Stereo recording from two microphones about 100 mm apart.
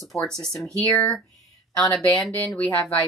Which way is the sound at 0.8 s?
15° left (ahead or behind).